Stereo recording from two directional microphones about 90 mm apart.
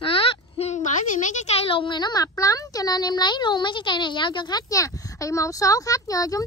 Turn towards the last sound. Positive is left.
turn(degrees=40)  # may be behind; listen again after turning